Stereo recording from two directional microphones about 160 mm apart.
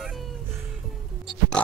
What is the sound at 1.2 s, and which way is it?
Oink, centre (ahead or behind).